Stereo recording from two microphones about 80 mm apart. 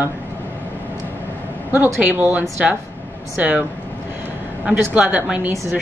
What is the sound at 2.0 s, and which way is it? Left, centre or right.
A woman's voice, centre.